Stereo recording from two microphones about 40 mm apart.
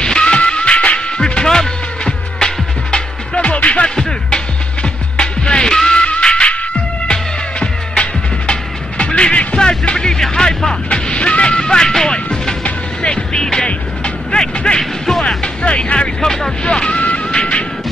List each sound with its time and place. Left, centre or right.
0.0 s music: left
3.3 s music: left
3.8 s music: centre
14.4 s a sound: centre
15.2 s vehicle: left